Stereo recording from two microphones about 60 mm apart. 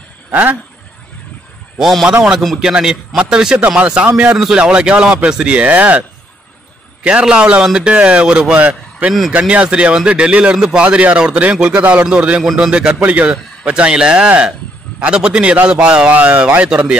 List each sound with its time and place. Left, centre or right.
0.3 s speech: right
1.8 s a man's voice: centre
2.0 s speech: centre
8.5 s a man's voice: right